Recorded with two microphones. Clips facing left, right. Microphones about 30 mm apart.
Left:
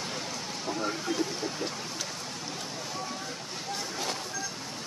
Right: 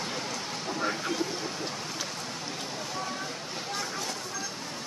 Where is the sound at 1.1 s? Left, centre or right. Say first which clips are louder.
Left 1 dB; centre.